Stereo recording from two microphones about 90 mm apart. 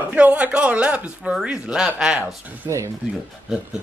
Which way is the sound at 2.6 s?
40° right (ahead or behind).